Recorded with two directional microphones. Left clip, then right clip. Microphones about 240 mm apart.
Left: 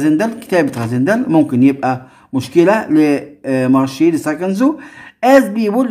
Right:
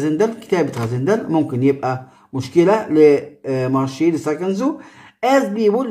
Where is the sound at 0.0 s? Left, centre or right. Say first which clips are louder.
Left 3 dB; left.